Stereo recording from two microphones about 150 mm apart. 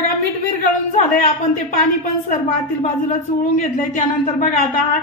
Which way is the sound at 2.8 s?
55° left (ahead or behind).